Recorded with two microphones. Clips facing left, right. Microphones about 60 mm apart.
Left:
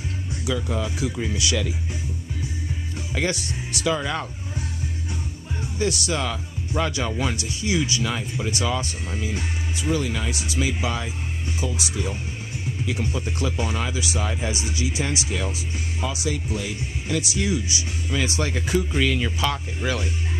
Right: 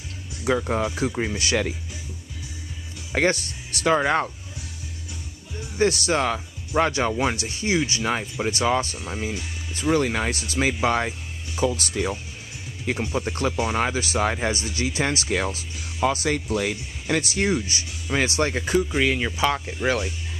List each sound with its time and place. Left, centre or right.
0.5 s speech: right
3.1 s speech: right
5.8 s speech: right
9.8 s speech: right
12.8 s speech: right
18.9 s speech: right